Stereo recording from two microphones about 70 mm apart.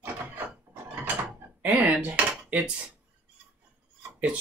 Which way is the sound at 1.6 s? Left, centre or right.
Right.